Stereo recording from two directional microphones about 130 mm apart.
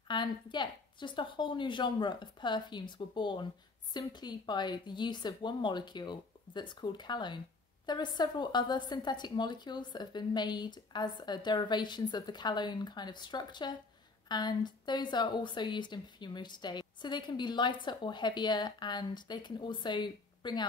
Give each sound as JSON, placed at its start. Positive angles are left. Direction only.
{"t": 0.1, "sound": "speech", "side_deg": 35}